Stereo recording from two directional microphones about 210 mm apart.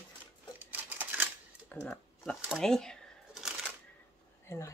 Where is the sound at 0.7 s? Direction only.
10° right (ahead or behind).